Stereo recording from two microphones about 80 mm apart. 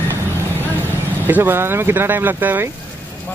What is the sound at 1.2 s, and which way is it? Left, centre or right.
Speech, right.